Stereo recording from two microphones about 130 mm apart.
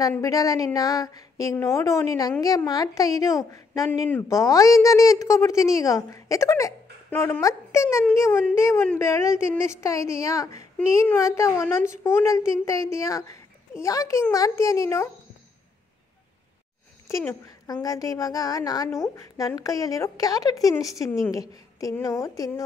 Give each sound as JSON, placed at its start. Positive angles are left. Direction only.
{"t": 0.2, "sound": "a woman's voice", "side_deg": 25}
{"t": 17.8, "sound": "a woman's voice", "side_deg": 25}